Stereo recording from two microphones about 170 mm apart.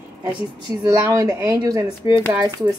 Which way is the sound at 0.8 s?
20° right (ahead or behind).